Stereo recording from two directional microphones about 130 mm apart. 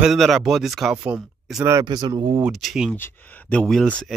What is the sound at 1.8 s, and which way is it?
Speech, 35° right (ahead or behind).